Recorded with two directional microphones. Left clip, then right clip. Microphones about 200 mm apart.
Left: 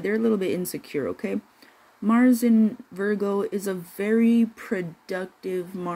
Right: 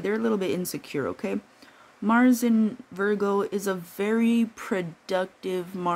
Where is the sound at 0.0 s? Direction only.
15° right (ahead or behind).